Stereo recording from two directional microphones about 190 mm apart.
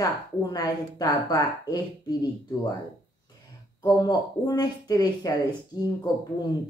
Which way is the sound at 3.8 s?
20° left (ahead or behind).